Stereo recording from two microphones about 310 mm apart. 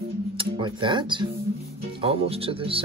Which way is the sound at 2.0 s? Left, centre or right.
Centre.